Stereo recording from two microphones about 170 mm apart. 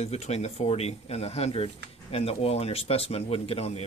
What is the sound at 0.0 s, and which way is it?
Speech, 40° left (ahead or behind).